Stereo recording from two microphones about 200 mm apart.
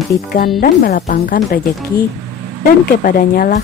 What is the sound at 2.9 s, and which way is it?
Speech, 45° left (ahead or behind).